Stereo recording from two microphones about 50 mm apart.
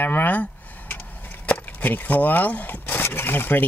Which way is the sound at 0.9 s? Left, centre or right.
Left.